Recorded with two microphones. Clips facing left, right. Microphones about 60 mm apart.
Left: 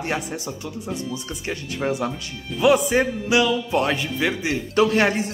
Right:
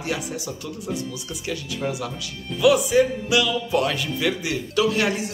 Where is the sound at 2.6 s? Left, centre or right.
Left.